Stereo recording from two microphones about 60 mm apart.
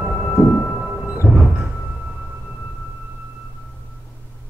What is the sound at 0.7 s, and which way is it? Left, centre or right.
Music, centre.